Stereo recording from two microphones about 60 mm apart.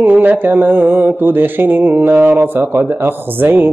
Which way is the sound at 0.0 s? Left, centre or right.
Right.